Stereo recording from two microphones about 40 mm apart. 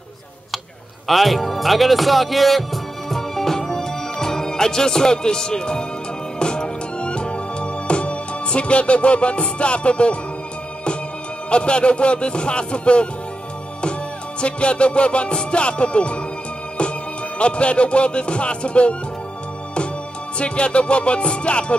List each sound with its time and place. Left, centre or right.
1.0 s speech: centre
6.4 s music: left
11.5 s music: left
14.4 s music: left
17.4 s music: left
20.3 s music: left